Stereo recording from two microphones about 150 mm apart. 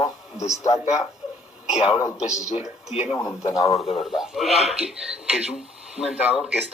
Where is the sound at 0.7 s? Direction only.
45° left (ahead or behind).